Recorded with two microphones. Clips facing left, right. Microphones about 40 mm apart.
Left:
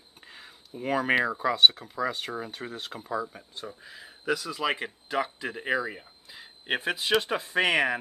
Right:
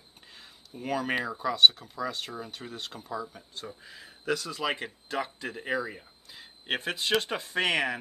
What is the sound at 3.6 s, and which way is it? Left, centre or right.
Speech, centre.